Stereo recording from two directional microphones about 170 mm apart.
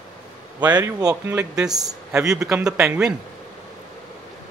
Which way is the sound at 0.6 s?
25° right (ahead or behind).